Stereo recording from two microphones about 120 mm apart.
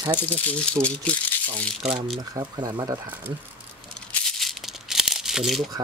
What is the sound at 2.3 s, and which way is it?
Speech, 35° right (ahead or behind).